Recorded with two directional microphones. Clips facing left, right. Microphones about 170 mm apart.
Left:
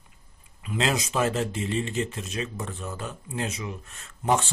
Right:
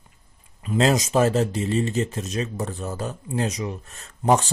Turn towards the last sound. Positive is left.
turn(degrees=-40)  # may be behind; listen again after turning